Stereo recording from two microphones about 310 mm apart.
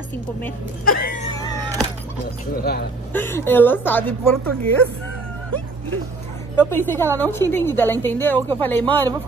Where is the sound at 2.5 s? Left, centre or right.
Left.